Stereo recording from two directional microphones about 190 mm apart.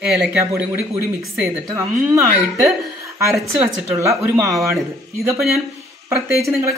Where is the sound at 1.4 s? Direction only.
15° right (ahead or behind).